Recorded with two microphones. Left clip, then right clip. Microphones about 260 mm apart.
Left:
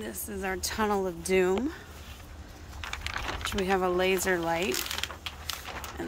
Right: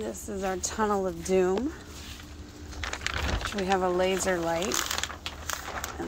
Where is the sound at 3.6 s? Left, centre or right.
Centre.